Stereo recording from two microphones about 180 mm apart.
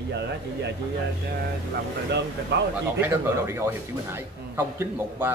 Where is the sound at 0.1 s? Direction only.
70° right (ahead or behind).